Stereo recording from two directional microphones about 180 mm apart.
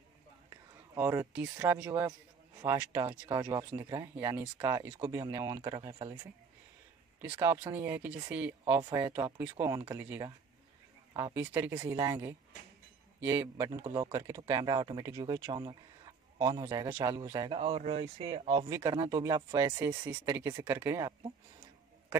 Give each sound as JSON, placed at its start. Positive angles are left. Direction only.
{"t": 0.9, "sound": "speech", "side_deg": -15}
{"t": 7.4, "sound": "speech", "side_deg": -10}
{"t": 11.8, "sound": "speech", "side_deg": -20}
{"t": 17.6, "sound": "speech", "side_deg": -35}
{"t": 18.7, "sound": "speech", "side_deg": -15}